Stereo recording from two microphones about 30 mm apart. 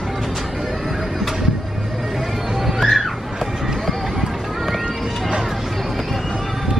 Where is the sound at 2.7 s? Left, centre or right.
Centre.